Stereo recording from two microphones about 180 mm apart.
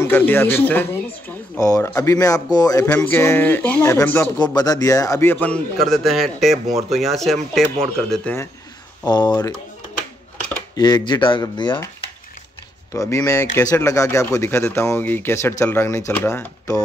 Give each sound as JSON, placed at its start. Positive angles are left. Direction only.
{"t": 0.0, "sound": "a man's voice", "side_deg": 10}
{"t": 9.0, "sound": "a man's voice", "side_deg": 25}
{"t": 10.8, "sound": "a man's voice", "side_deg": 25}
{"t": 12.9, "sound": "speech", "side_deg": 15}